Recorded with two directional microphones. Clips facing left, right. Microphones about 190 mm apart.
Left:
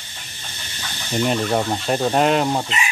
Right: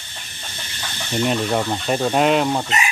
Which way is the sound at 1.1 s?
Centre (ahead or behind).